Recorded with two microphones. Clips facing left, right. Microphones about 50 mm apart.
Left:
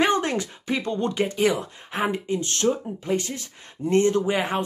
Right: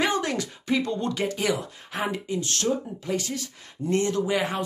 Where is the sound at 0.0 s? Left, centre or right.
Left.